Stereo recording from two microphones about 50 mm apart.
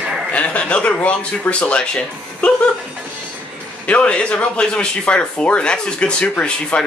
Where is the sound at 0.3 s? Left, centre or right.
Left.